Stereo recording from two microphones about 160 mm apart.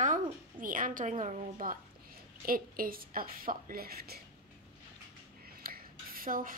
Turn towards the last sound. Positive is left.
turn(degrees=-60)  # may be behind; listen again after turning